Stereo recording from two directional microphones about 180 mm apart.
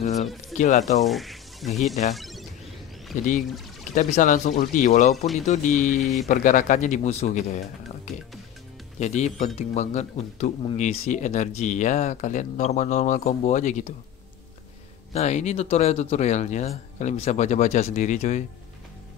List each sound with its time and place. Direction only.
0.0 s a sound: 40° left (ahead or behind)
0.6 s speech: 45° left (ahead or behind)
1.0 s a sound: centre (ahead or behind)
3.9 s speech: 45° left (ahead or behind)
5.1 s speech: centre (ahead or behind)
5.5 s speech: 45° left (ahead or behind)
15.1 s speech: 40° left (ahead or behind)